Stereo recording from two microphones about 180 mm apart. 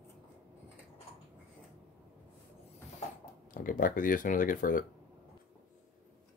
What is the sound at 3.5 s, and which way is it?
Speech, 50° left (ahead or behind).